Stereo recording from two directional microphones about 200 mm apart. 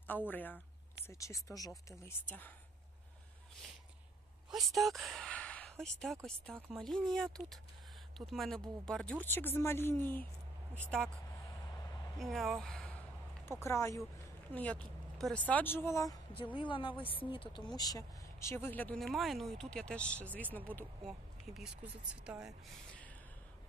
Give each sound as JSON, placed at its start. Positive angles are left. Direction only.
{"t": 0.3, "sound": "speech", "side_deg": 10}
{"t": 4.5, "sound": "speech", "side_deg": 0}
{"t": 12.2, "sound": "speech", "side_deg": 0}